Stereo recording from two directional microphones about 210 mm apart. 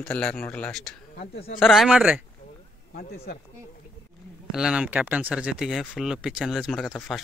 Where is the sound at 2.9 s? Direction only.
45° left (ahead or behind).